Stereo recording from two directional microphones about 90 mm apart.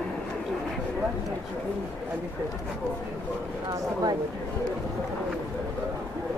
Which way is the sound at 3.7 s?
45° right (ahead or behind).